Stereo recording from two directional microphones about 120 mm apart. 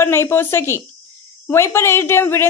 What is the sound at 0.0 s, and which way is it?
Speech, 20° left (ahead or behind).